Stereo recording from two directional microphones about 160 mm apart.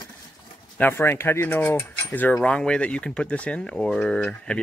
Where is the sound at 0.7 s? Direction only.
15° left (ahead or behind).